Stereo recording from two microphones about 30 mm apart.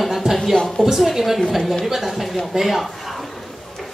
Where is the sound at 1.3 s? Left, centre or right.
Centre.